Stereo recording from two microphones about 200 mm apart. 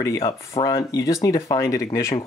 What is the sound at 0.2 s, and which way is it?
Speech, 25° left (ahead or behind).